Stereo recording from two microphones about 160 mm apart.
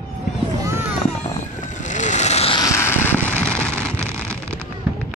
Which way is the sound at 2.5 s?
20° left (ahead or behind).